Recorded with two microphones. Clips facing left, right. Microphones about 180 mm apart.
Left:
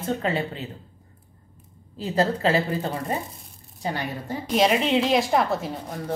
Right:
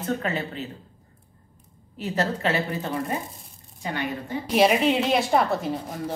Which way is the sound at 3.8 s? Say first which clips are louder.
Even; 40° left (ahead or behind).